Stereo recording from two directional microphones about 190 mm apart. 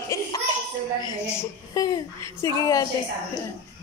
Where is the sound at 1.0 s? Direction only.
15° left (ahead or behind).